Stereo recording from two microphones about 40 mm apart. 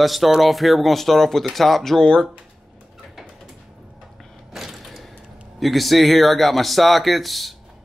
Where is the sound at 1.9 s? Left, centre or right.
Centre.